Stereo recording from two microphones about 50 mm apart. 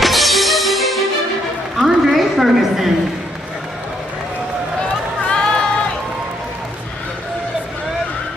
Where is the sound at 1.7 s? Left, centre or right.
Centre.